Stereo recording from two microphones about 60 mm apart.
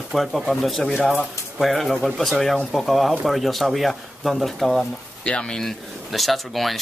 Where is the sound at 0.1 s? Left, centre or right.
Centre.